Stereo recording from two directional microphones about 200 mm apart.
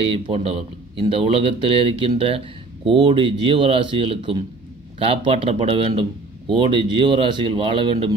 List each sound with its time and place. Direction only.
0.0 s speech: 30° right (ahead or behind)